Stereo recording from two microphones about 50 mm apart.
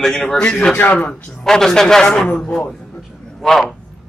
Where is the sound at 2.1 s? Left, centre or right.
Left.